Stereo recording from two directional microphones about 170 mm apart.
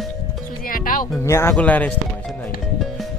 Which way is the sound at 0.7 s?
55° left (ahead or behind).